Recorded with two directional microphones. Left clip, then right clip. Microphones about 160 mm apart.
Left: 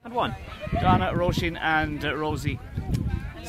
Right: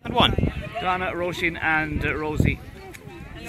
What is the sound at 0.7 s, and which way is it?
Speech, 55° left (ahead or behind).